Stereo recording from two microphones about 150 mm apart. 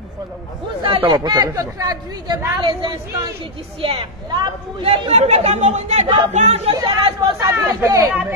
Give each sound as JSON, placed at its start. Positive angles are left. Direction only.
{"t": 0.8, "sound": "a woman's voice", "side_deg": -35}
{"t": 6.7, "sound": "speech", "side_deg": -30}
{"t": 7.8, "sound": "speech", "side_deg": -20}
{"t": 8.1, "sound": "speech", "side_deg": -10}